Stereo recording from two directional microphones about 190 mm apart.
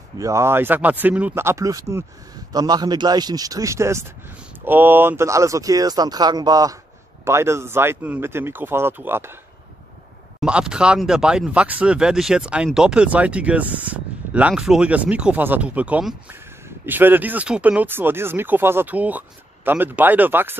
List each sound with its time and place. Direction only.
0.2 s speech: 15° right (ahead or behind)
10.4 s speech: 5° right (ahead or behind)